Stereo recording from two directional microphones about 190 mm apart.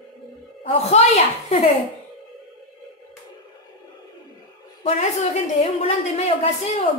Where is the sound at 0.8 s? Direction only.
35° left (ahead or behind).